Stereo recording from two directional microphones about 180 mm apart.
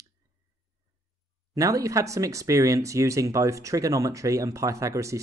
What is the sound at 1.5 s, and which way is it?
Speech, 20° right (ahead or behind).